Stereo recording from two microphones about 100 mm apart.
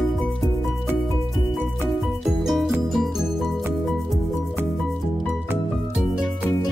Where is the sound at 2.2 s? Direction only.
Centre (ahead or behind).